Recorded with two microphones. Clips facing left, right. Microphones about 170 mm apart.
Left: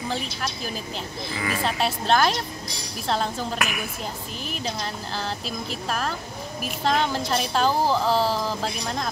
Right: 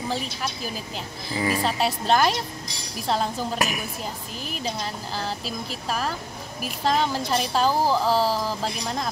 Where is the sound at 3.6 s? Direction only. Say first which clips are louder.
Right 2 dB; 35° right (ahead or behind).